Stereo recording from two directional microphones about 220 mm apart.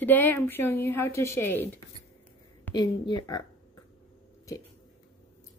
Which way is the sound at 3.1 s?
20° left (ahead or behind).